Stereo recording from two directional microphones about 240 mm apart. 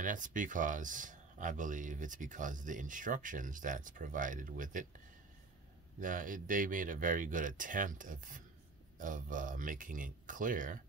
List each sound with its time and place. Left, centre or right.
0.0 s speech: right
5.9 s speech: right